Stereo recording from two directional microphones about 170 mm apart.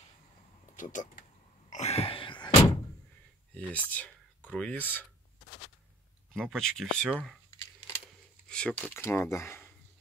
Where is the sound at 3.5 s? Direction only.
10° left (ahead or behind).